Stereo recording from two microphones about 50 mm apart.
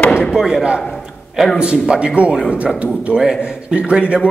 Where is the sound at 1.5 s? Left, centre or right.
Right.